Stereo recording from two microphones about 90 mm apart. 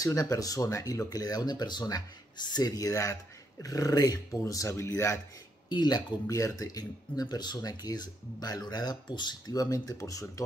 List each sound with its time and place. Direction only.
0.0 s speech: 40° left (ahead or behind)
5.7 s speech: 50° left (ahead or behind)